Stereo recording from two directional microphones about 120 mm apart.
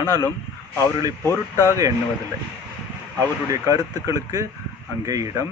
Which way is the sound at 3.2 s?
30° right (ahead or behind).